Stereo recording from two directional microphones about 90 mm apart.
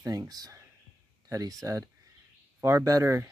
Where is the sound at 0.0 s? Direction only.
40° right (ahead or behind).